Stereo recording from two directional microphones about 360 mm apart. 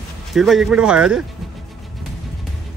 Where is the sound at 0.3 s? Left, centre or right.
Centre.